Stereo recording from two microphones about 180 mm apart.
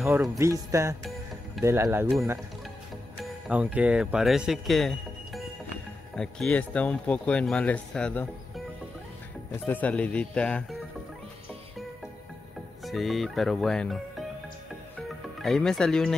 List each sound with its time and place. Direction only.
0.4 s speech: 15° right (ahead or behind)
3.4 s speech: 5° right (ahead or behind)
12.8 s speech: centre (ahead or behind)
15.4 s speech: 5° left (ahead or behind)